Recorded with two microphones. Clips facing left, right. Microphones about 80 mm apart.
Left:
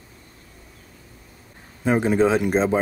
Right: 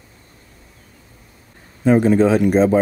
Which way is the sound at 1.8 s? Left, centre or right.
Centre.